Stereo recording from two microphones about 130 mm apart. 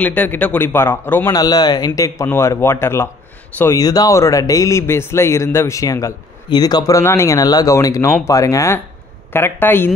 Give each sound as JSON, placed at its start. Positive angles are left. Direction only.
{"t": 0.0, "sound": "a man's voice", "side_deg": 15}
{"t": 1.3, "sound": "a man's voice", "side_deg": 30}